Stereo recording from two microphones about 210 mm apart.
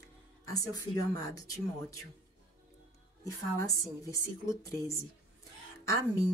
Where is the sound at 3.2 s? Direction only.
15° left (ahead or behind).